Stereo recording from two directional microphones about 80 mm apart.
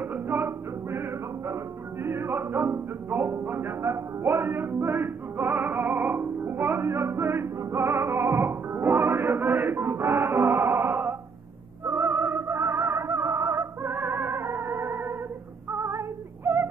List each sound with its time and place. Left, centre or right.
0.0 s music: right
15.7 s female singing: right